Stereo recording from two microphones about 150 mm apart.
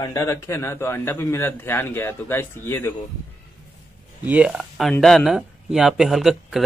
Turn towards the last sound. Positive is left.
turn(degrees=0)  # may be behind; listen again after turning